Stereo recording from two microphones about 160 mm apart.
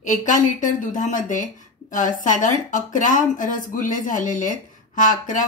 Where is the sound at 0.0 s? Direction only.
50° left (ahead or behind).